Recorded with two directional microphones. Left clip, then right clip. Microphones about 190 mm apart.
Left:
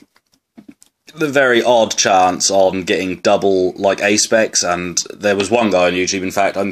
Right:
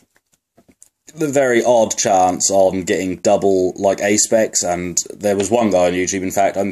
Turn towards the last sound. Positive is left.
turn(degrees=-5)  # may be behind; listen again after turning